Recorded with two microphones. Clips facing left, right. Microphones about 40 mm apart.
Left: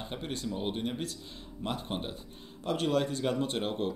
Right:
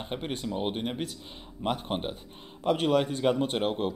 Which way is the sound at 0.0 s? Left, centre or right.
Right.